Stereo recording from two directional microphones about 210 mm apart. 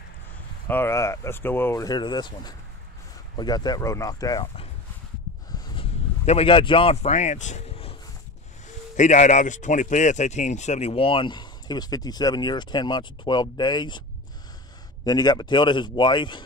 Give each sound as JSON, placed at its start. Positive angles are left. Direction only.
{"t": 0.7, "sound": "speech", "side_deg": 10}
{"t": 5.5, "sound": "a sound", "side_deg": 25}
{"t": 8.9, "sound": "speech", "side_deg": 35}
{"t": 15.0, "sound": "speech", "side_deg": 20}